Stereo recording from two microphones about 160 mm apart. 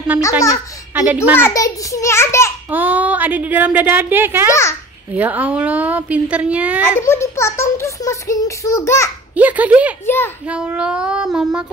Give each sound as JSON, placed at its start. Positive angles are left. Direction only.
{"t": 0.2, "sound": "a child's voice", "side_deg": 20}
{"t": 0.9, "sound": "a woman's voice", "side_deg": -10}
{"t": 1.3, "sound": "a child's voice", "side_deg": 15}
{"t": 2.7, "sound": "a woman's voice", "side_deg": -10}
{"t": 4.5, "sound": "a child's voice", "side_deg": 20}
{"t": 5.1, "sound": "a woman's voice", "side_deg": -10}
{"t": 7.0, "sound": "a child's voice", "side_deg": 15}
{"t": 9.3, "sound": "a woman's voice", "side_deg": -10}
{"t": 10.0, "sound": "a child's voice", "side_deg": 15}
{"t": 10.4, "sound": "child singing", "side_deg": -5}